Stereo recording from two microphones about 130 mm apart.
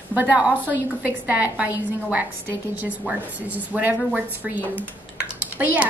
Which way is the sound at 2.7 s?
10° right (ahead or behind).